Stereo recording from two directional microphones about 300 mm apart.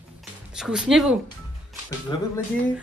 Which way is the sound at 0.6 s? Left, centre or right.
Centre.